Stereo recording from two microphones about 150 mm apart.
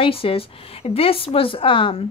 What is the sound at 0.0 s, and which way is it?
A woman's voice, 40° left (ahead or behind).